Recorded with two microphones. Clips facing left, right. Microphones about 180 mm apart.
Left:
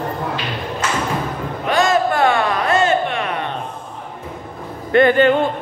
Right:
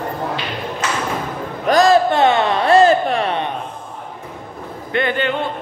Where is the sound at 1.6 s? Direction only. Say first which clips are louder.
Right 4 dB; 35° right (ahead or behind).